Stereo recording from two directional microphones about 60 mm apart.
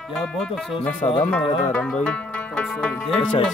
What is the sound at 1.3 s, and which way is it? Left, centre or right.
Music, left.